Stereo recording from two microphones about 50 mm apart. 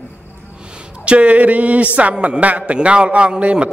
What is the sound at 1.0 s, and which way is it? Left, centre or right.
A man's voice, right.